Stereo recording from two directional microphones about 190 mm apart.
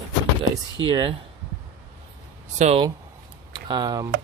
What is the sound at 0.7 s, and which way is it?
Speech, 25° right (ahead or behind).